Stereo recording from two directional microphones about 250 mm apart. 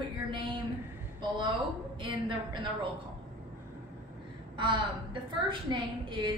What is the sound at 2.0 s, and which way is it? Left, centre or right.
Speech, centre.